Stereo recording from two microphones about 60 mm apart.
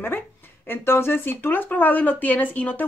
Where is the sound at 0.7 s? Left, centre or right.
Left.